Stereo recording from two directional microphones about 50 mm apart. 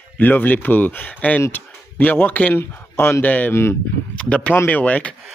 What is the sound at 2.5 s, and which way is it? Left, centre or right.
Speech, left.